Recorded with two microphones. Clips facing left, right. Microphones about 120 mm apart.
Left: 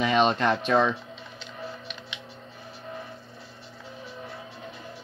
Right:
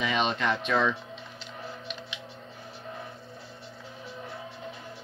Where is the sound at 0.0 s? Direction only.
40° left (ahead or behind).